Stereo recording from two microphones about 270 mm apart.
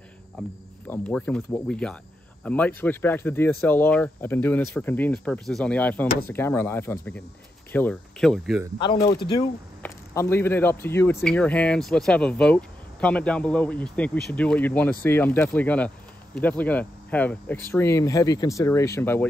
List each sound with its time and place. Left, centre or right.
0.4 s speech: centre
8.7 s speech: centre